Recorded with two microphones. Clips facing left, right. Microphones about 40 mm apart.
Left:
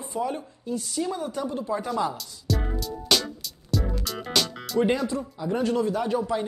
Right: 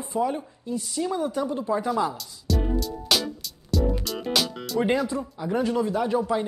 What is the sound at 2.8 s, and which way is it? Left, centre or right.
Music, centre.